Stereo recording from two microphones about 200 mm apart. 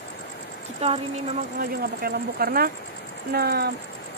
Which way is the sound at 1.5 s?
50° right (ahead or behind).